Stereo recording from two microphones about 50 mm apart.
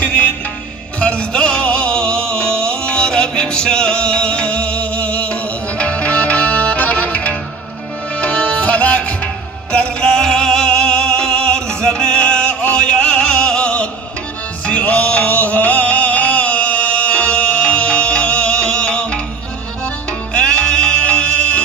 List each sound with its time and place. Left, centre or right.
0.0 s music: left
20.3 s music: centre
21.0 s music: left